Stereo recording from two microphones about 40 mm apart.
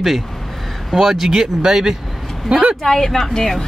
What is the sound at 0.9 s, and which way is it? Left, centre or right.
Speech, centre.